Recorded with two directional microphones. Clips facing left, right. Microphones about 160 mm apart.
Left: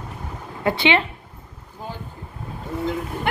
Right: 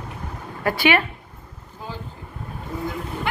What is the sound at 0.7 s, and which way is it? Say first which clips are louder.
Speech: even; 20° left (ahead or behind).